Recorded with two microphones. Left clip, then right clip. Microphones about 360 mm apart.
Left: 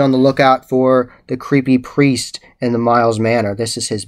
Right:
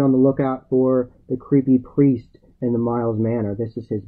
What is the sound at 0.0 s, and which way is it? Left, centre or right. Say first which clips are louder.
Speech: left 6 dB; centre.